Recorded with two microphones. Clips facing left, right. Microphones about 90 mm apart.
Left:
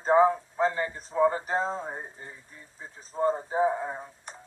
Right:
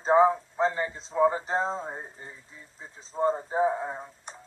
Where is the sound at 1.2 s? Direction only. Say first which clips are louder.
Even; 10° right (ahead or behind).